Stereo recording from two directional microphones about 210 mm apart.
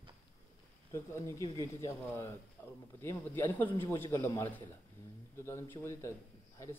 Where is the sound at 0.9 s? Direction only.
15° left (ahead or behind).